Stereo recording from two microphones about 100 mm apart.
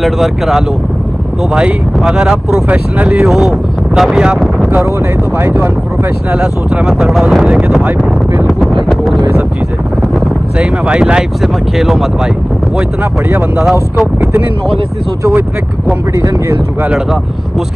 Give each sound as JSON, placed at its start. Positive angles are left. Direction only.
{"t": 0.0, "sound": "speech", "side_deg": 0}
{"t": 3.3, "sound": "speech", "side_deg": -5}
{"t": 5.4, "sound": "speech", "side_deg": -25}
{"t": 6.3, "sound": "speech", "side_deg": -10}
{"t": 8.8, "sound": "a sound", "side_deg": 0}
{"t": 10.6, "sound": "speech", "side_deg": -10}
{"t": 13.6, "sound": "speech", "side_deg": -5}